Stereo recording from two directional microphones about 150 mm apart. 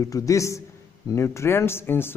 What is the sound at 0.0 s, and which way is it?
A man's voice, 25° left (ahead or behind).